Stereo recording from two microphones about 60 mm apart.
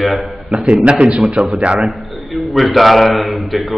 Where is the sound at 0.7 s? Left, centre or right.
Right.